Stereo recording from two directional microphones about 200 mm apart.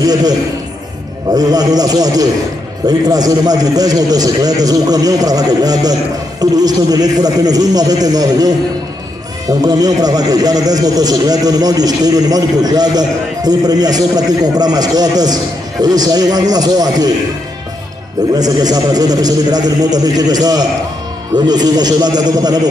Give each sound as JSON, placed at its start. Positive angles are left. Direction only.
{"t": 0.0, "sound": "a man's voice", "side_deg": -20}
{"t": 18.3, "sound": "a man's voice", "side_deg": -20}